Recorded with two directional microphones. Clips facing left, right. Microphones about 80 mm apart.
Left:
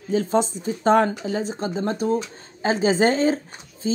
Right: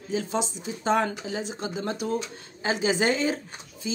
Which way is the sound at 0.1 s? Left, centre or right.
Left.